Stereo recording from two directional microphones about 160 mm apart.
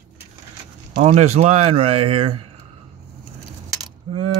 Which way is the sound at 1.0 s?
40° right (ahead or behind).